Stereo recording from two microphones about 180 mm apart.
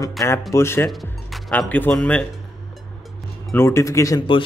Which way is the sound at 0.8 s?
Centre (ahead or behind).